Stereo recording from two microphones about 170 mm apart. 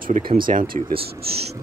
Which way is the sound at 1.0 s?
65° right (ahead or behind).